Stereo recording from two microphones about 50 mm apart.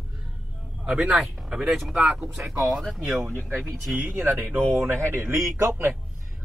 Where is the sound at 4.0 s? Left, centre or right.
Right.